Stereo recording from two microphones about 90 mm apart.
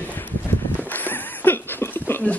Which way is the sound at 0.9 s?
20° left (ahead or behind).